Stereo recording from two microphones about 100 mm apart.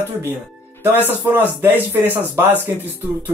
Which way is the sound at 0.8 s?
20° right (ahead or behind).